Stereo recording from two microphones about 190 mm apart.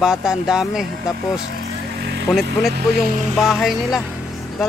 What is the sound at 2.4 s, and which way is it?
Speech, 60° right (ahead or behind).